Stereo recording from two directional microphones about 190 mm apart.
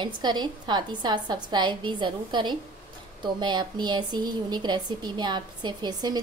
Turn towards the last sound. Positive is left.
turn(degrees=-20)  # may be behind; listen again after turning